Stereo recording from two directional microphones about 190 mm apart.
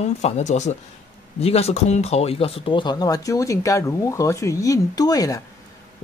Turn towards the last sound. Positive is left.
turn(degrees=20)  # may be behind; listen again after turning